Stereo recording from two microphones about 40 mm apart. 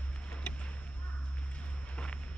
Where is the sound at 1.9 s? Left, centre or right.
Left.